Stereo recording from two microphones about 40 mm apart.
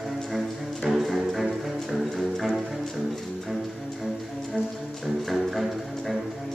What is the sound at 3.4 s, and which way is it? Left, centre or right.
Music, centre.